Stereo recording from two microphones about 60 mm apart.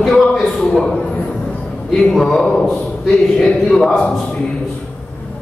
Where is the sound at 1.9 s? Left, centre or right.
Centre.